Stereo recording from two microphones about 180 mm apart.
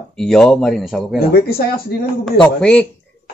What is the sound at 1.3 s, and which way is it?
Speech, 60° left (ahead or behind).